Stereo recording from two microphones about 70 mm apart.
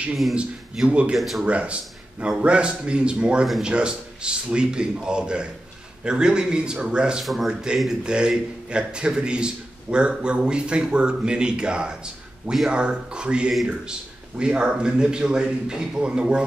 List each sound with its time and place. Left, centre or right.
0.1 s speech: centre
0.4 s a man's voice: centre
1.1 s speech: centre
1.4 s a man's voice: centre